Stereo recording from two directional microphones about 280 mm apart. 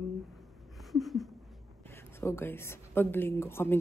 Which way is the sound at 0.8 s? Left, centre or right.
Centre.